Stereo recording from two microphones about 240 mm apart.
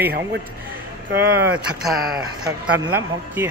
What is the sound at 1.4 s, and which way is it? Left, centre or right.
Speech, centre.